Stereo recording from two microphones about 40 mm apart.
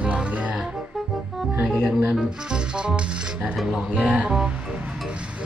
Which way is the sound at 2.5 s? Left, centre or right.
Right.